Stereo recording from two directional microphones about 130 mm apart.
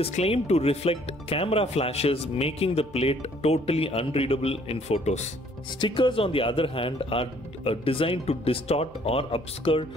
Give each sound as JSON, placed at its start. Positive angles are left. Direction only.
{"t": 0.1, "sound": "speech", "side_deg": 55}
{"t": 5.8, "sound": "speech", "side_deg": 40}